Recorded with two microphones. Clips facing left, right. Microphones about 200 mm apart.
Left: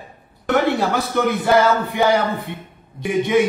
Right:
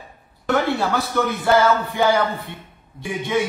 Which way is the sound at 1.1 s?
15° left (ahead or behind).